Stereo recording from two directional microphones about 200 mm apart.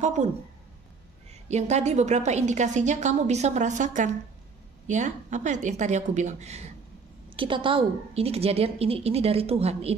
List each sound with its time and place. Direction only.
0.0 s a woman's voice: 35° right (ahead or behind)
1.5 s a woman's voice: 35° right (ahead or behind)
7.2 s a woman's voice: 25° right (ahead or behind)